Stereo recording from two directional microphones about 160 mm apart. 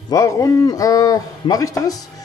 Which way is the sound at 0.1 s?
20° left (ahead or behind).